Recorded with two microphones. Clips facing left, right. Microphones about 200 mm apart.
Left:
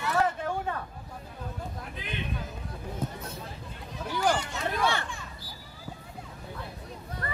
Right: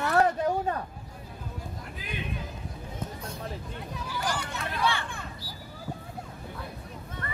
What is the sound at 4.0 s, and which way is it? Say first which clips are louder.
Hubbub: left 6 dB; 60° left (ahead or behind).